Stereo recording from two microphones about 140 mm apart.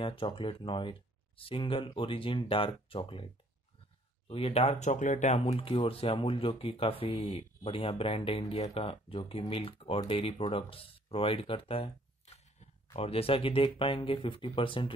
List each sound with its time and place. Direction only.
0.0 s speech: 40° left (ahead or behind)
4.3 s speech: 45° left (ahead or behind)